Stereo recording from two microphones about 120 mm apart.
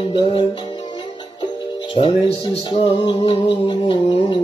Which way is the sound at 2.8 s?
50° left (ahead or behind).